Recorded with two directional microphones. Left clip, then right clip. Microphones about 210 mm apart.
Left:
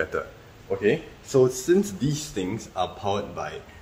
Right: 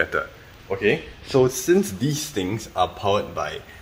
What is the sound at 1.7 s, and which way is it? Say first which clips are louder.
Speech: right 2 dB; 25° right (ahead or behind).